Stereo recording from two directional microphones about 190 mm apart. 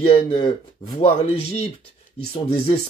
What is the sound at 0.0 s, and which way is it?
Speech, 30° left (ahead or behind).